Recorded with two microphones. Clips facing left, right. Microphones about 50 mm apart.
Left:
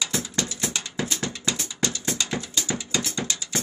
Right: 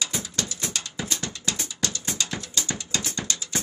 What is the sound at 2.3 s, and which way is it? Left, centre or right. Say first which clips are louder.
Gears: left 3 dB; centre.